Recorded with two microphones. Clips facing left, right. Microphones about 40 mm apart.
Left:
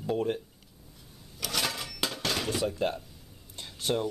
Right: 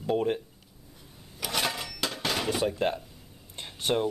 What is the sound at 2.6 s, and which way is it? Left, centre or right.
Speech, right.